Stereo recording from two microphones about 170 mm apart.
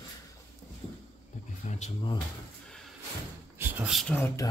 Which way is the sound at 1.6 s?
45° left (ahead or behind).